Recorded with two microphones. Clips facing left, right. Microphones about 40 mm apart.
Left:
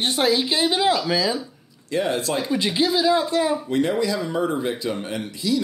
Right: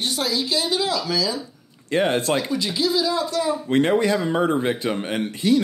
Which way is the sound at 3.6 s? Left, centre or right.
Right.